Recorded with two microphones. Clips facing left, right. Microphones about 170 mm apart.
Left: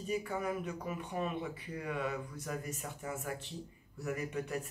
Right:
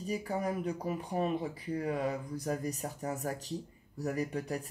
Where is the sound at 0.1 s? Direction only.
35° right (ahead or behind).